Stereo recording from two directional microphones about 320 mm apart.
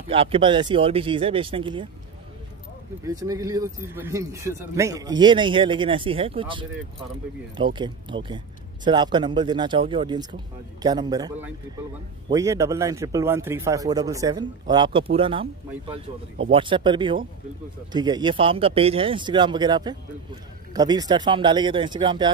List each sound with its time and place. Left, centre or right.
0.1 s speech: centre
3.1 s speech: centre
16.5 s speech: centre